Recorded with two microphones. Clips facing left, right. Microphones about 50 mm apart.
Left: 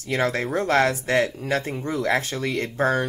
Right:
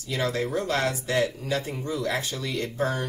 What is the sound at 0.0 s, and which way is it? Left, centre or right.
Speech, left.